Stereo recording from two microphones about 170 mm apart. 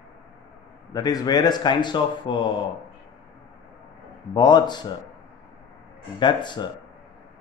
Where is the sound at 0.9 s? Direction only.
20° left (ahead or behind).